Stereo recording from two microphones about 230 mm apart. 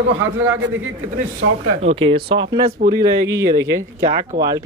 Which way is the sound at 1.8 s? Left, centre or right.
Right.